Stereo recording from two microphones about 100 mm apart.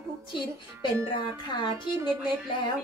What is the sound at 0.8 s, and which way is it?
A woman's voice, 55° left (ahead or behind).